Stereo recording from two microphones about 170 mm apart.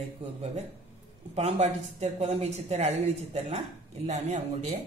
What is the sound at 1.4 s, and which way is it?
A woman's voice, 40° right (ahead or behind).